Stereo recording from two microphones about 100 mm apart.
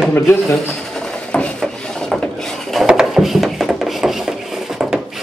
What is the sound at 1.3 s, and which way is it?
Wood, 10° left (ahead or behind).